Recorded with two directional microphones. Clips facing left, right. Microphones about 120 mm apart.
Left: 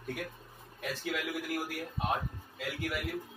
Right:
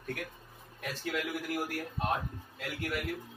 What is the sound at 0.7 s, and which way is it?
A man's voice, centre (ahead or behind).